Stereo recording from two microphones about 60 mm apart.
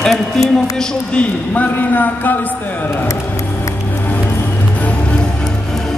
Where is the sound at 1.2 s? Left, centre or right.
Left.